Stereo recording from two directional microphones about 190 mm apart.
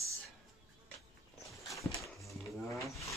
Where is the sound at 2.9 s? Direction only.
15° left (ahead or behind).